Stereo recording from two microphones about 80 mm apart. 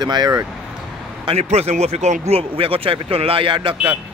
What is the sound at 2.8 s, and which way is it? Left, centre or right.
Speech, right.